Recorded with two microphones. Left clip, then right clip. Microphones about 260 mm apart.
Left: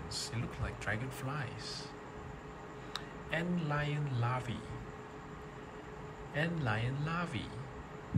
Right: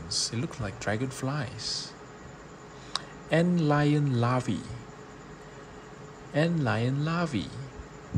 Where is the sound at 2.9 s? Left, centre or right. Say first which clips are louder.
Right 11 dB; centre.